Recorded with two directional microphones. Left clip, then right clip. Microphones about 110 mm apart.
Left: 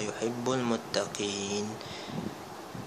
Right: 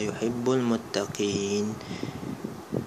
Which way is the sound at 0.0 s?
40° right (ahead or behind).